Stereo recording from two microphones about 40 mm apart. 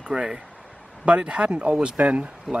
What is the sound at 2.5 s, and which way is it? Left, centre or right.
Speech, centre.